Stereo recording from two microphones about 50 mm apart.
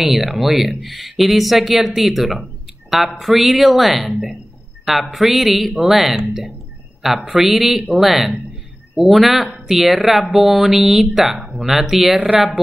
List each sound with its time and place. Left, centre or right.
0.0 s speech: centre
12.2 s speech: centre